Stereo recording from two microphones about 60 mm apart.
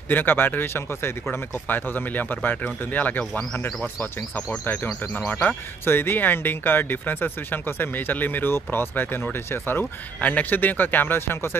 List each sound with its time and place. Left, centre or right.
0.1 s speech: left
5.9 s speech: left